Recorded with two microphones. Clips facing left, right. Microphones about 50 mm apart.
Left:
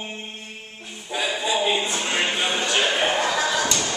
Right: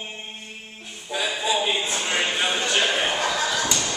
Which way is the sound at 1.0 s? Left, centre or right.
Centre.